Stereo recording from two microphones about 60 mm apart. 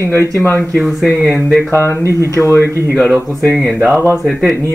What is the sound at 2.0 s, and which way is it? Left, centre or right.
Speech, right.